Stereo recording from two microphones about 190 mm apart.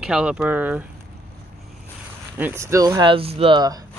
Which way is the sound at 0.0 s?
5° right (ahead or behind).